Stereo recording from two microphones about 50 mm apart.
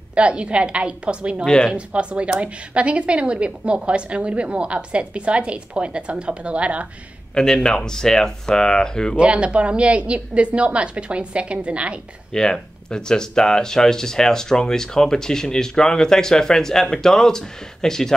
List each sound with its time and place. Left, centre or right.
0.1 s speech: right
1.4 s speech: centre
1.7 s speech: right
7.3 s speech: centre
9.1 s speech: right
12.3 s speech: centre